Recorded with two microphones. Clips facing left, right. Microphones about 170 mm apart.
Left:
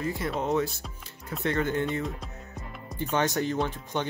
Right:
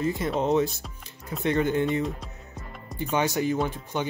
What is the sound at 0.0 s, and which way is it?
Speech, 20° right (ahead or behind).